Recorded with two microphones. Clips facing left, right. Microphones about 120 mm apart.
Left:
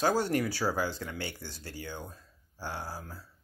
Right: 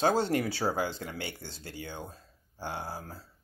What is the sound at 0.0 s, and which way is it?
Speech, 25° right (ahead or behind).